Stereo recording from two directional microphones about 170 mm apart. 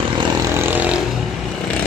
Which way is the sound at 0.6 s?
10° right (ahead or behind).